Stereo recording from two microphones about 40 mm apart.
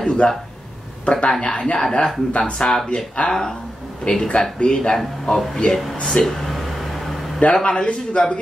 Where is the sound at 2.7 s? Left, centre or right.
Centre.